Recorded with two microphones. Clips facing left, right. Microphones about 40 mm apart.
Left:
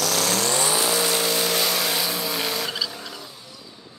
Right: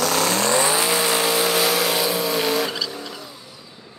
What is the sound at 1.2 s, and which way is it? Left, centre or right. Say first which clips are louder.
Vehicle: right 4 dB; centre.